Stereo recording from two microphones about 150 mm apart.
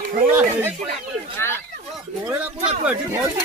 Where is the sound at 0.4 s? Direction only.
15° right (ahead or behind).